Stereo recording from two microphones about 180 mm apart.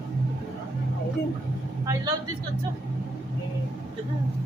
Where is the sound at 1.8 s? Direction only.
20° right (ahead or behind).